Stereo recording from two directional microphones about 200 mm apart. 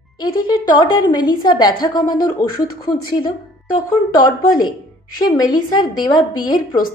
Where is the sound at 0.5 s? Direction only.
20° left (ahead or behind).